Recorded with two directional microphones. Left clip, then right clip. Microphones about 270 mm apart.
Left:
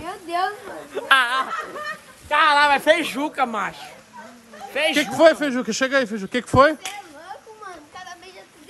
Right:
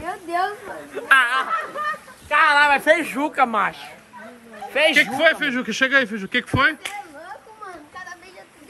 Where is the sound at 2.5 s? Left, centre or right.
Left.